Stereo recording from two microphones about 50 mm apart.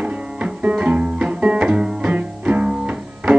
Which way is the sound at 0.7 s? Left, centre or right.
Right.